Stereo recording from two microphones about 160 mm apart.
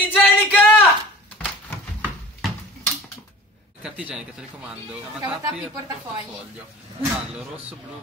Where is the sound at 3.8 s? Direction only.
5° right (ahead or behind).